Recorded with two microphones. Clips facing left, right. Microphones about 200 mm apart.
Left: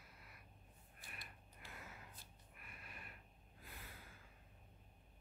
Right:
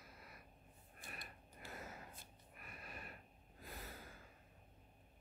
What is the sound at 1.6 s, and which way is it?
Gasp, 40° right (ahead or behind).